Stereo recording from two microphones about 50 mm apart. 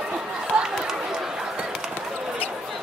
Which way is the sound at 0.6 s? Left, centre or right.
Centre.